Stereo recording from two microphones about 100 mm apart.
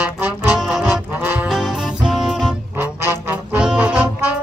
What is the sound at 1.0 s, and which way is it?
Music, 15° right (ahead or behind).